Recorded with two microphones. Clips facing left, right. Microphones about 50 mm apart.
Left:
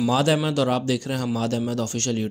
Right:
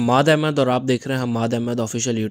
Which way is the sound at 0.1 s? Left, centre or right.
Right.